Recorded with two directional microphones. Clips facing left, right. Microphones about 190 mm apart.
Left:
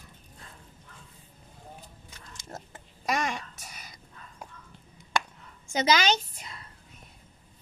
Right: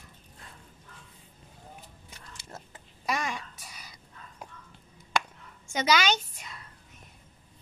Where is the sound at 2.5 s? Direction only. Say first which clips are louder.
Left 4 dB; 45° left (ahead or behind).